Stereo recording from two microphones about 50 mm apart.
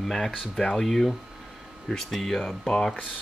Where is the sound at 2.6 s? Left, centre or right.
Centre.